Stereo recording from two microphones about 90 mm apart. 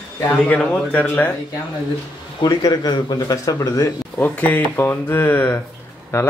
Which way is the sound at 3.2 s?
40° left (ahead or behind).